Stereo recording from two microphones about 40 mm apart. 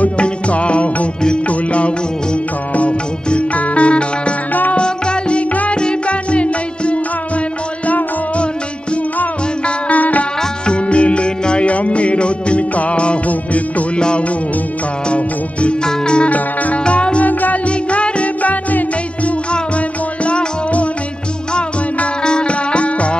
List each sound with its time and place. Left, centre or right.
0.0 s music: left
5.5 s music: left
5.8 s music: left
9.7 s music: left
13.9 s music: left
16.3 s music: left
16.8 s music: left
17.2 s music: left
17.6 s music: left
20.2 s music: left